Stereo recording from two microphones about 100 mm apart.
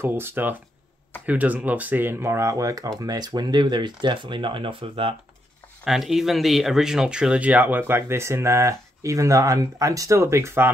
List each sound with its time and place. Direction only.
0.0 s speech: 20° right (ahead or behind); by 5.1 s 65° right (ahead or behind)
5.9 s speech: 5° right (ahead or behind); by 10.7 s 25° right (ahead or behind)